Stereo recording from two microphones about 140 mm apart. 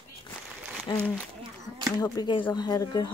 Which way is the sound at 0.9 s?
30° left (ahead or behind).